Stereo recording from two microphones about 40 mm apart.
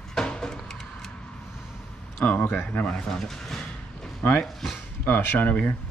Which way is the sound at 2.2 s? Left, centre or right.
Left.